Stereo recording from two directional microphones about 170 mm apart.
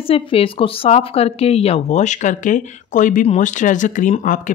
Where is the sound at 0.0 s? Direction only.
35° left (ahead or behind).